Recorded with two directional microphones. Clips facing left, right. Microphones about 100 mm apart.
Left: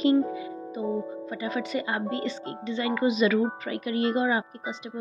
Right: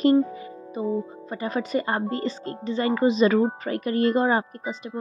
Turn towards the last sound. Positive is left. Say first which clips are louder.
# right 4 dB
turn(degrees=-45)  # may be behind; listen again after turning